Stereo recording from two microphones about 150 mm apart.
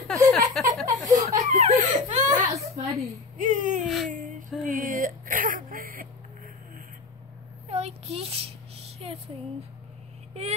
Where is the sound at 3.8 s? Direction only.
Centre (ahead or behind).